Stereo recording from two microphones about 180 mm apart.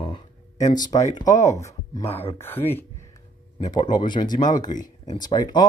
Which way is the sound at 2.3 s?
10° left (ahead or behind).